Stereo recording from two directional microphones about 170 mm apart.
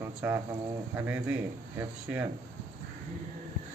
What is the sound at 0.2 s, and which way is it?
Speech, 10° right (ahead or behind).